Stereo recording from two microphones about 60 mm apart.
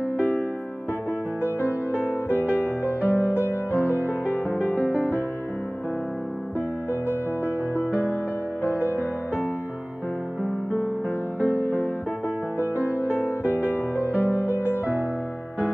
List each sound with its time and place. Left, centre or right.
0.2 s music: left
6.9 s music: left
11.3 s music: left
13.1 s music: left